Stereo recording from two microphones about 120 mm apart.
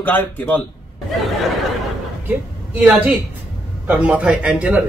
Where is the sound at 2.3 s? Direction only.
10° right (ahead or behind).